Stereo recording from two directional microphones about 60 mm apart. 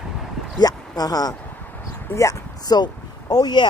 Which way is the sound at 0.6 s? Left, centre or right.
Left.